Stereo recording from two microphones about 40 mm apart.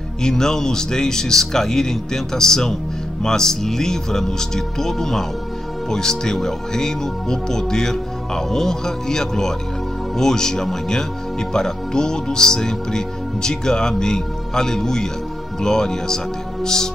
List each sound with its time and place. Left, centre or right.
0.2 s speech: centre